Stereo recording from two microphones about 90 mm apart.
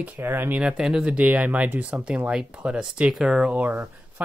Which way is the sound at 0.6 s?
10° right (ahead or behind).